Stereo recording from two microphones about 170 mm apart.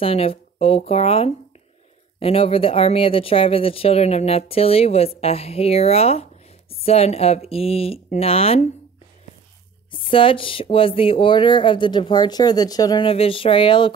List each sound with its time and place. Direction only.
0.0 s speech: 35° left (ahead or behind)
9.8 s speech: 30° left (ahead or behind)